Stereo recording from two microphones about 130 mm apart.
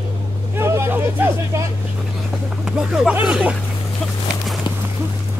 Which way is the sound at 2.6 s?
5° right (ahead or behind).